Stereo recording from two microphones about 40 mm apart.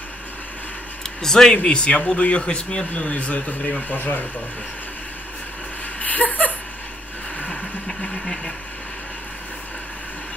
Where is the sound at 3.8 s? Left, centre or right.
Left.